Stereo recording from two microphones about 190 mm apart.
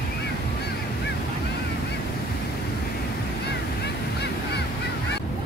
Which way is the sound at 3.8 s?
60° left (ahead or behind).